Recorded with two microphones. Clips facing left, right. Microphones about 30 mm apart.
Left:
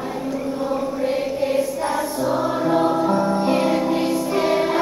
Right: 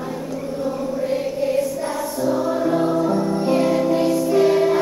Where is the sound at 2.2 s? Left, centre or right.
Left.